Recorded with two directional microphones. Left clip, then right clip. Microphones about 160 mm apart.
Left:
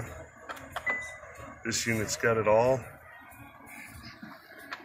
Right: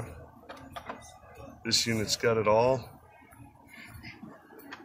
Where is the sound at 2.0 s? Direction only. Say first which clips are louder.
Even; centre (ahead or behind).